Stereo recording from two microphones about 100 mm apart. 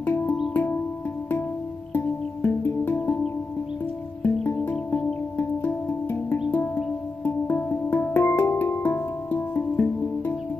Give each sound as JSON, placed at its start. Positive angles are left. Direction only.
{"t": 0.0, "sound": "music", "side_deg": 20}
{"t": 2.0, "sound": "music", "side_deg": 20}
{"t": 4.2, "sound": "music", "side_deg": 25}